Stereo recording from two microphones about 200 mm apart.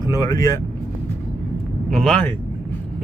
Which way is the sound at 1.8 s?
Centre (ahead or behind).